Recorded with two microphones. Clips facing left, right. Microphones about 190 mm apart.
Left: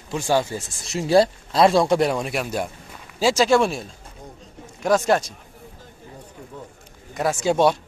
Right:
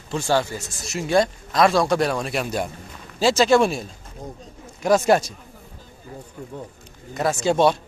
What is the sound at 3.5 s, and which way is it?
Speech, centre (ahead or behind).